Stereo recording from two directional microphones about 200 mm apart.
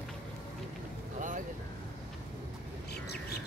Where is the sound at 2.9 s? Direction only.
55° left (ahead or behind).